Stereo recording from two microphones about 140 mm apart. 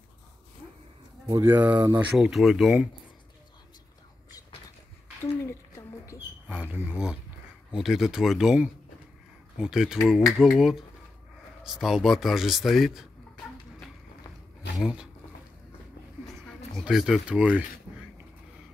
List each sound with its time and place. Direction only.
1.4 s speech: 10° right (ahead or behind)
5.2 s a sound: 20° left (ahead or behind)
6.5 s speech: 10° right (ahead or behind)
14.8 s speech: 5° right (ahead or behind)
16.4 s speech: centre (ahead or behind)